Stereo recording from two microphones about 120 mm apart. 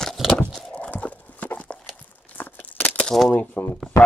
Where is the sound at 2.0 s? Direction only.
15° left (ahead or behind).